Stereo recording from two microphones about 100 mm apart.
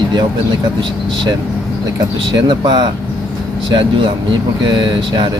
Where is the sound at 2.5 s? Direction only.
50° right (ahead or behind).